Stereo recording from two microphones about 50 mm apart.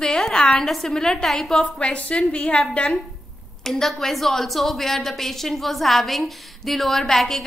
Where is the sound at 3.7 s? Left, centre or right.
Centre.